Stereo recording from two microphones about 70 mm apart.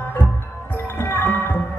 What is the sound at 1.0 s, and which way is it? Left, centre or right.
Music, left.